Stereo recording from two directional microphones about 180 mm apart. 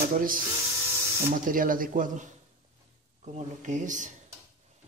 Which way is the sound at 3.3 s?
40° right (ahead or behind).